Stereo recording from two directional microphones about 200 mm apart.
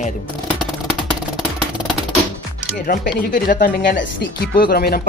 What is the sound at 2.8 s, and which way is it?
Speech, 45° left (ahead or behind).